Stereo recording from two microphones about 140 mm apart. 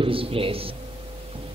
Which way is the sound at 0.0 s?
40° right (ahead or behind).